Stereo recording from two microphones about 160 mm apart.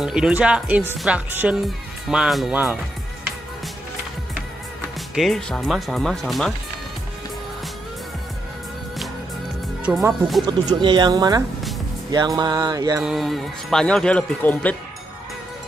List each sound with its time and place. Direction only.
0.0 s speech: 5° right (ahead or behind)
5.1 s speech: centre (ahead or behind)
9.9 s speech: 5° right (ahead or behind)
10.4 s speech: 25° right (ahead or behind)
13.0 s speech: centre (ahead or behind)